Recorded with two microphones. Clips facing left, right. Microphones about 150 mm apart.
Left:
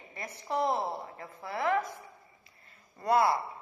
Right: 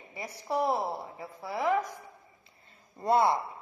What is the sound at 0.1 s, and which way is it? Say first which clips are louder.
A woman's voice: right 2 dB; 10° right (ahead or behind).